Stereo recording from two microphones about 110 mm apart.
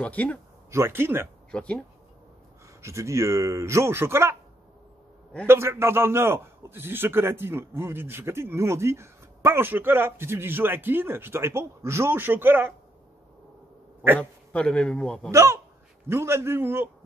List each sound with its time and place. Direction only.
0.0 s a man's voice: 10° left (ahead or behind)
0.7 s a man's voice: 25° right (ahead or behind)
1.5 s speech: 10° left (ahead or behind)
2.8 s a man's voice: 25° right (ahead or behind)
5.5 s a man's voice: 25° right (ahead or behind)
14.5 s a man's voice: 10° left (ahead or behind)
15.3 s a man's voice: 25° right (ahead or behind)